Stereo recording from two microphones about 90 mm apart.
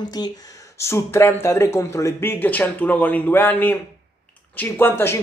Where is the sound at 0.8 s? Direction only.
30° left (ahead or behind).